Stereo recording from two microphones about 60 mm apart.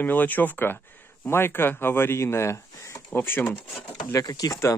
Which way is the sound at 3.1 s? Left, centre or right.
Left.